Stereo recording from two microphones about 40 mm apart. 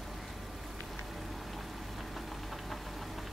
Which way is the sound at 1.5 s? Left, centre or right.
Centre.